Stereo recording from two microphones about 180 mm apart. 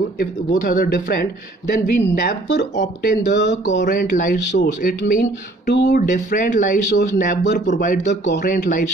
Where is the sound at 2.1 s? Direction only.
65° left (ahead or behind).